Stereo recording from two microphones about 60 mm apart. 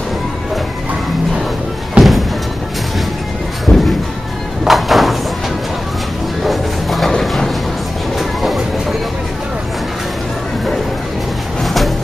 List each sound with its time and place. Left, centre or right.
2.0 s music: centre
3.7 s music: left
4.6 s a sound: centre
6.4 s music: centre
8.2 s train: centre
11.6 s a sound: centre